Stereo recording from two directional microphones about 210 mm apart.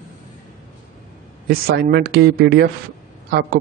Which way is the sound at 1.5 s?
50° right (ahead or behind).